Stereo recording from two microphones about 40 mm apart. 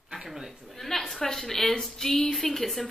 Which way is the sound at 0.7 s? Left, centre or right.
Centre.